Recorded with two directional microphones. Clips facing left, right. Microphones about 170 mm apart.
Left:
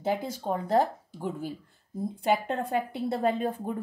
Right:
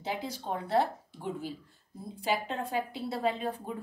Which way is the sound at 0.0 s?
50° left (ahead or behind).